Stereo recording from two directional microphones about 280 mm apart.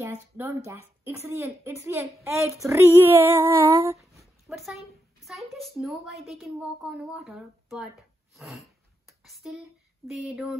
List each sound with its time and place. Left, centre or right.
0.0 s a woman's voice: centre